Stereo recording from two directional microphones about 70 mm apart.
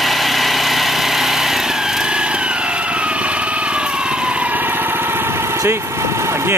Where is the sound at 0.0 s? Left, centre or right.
Centre; by 5.3 s right.